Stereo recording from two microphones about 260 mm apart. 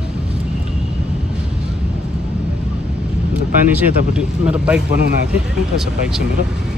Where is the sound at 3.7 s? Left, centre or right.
Centre.